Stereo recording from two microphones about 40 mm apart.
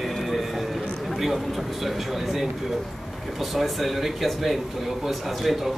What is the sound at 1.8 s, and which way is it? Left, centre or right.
A man's voice, centre.